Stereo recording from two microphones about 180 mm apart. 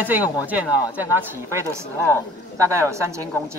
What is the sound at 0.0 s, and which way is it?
Speech, 10° right (ahead or behind).